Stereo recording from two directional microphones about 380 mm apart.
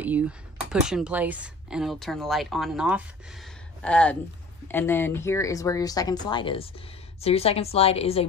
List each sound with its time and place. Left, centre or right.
0.0 s speech: centre